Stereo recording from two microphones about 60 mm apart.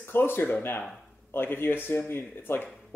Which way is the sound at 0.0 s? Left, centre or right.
Left.